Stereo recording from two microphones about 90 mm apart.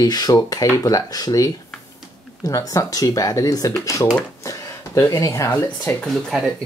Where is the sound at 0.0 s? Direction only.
45° left (ahead or behind).